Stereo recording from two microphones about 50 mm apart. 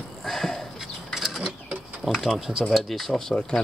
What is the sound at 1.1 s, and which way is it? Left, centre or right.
Bird flight, centre.